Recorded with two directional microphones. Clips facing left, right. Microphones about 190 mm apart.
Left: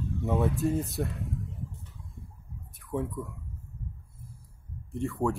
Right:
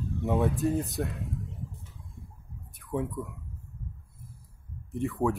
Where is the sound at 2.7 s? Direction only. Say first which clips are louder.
Right 1 dB; centre (ahead or behind).